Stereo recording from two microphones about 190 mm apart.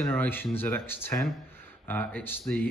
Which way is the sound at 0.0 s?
10° left (ahead or behind).